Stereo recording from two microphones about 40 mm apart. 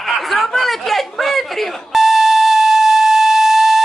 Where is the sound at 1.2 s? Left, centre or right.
Centre.